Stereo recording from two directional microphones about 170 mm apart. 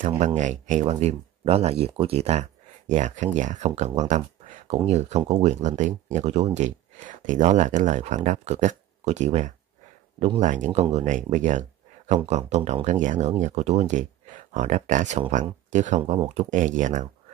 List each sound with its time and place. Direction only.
0.2 s speech: 45° right (ahead or behind)
16.0 s speech: 35° right (ahead or behind)